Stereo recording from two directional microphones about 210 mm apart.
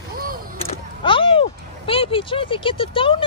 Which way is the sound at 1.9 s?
25° left (ahead or behind).